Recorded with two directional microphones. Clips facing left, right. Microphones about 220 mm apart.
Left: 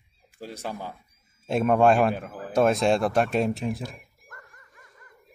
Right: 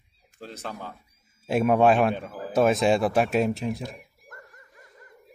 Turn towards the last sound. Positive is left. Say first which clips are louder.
# right 3 dB
turn(degrees=-25)  # may be behind; listen again after turning